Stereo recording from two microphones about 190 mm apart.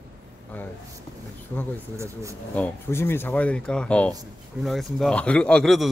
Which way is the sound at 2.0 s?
15° right (ahead or behind).